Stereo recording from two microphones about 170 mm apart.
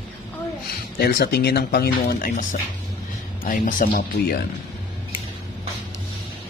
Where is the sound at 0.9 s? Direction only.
65° left (ahead or behind); by 4.0 s 50° left (ahead or behind).